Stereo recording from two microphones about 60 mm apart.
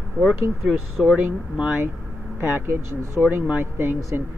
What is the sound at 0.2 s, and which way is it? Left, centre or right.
Speech, centre.